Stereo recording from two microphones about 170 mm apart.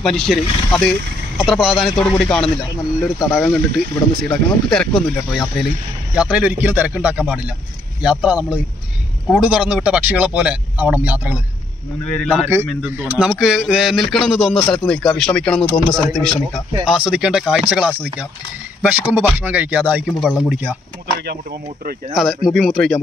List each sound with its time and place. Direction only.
0.0 s speech: centre (ahead or behind)
12.1 s speech: 5° left (ahead or behind)
12.4 s speech: 10° right (ahead or behind)
21.2 s speech: 70° right (ahead or behind)
22.1 s speech: centre (ahead or behind)